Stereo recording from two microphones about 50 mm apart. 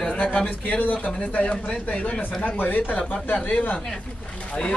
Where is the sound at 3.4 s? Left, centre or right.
Left.